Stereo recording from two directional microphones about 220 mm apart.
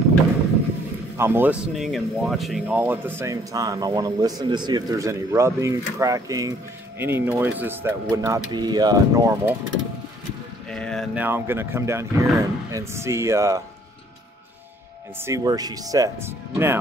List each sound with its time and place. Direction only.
1.1 s a man's voice: 10° right (ahead or behind)
10.7 s speech: 5° left (ahead or behind)
11.1 s a man's voice: 10° right (ahead or behind)
15.1 s a man's voice: 15° right (ahead or behind)